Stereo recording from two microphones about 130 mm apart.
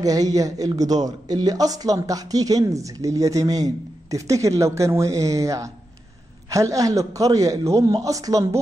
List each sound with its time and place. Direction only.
0.0 s speech: 30° right (ahead or behind)